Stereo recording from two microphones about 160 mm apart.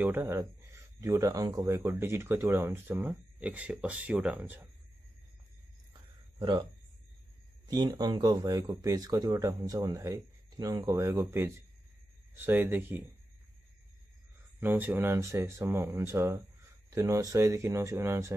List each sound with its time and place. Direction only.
0.0 s speech: 15° right (ahead or behind)
6.4 s speech: 30° right (ahead or behind); by 13.0 s 10° right (ahead or behind)
14.6 s speech: 15° right (ahead or behind)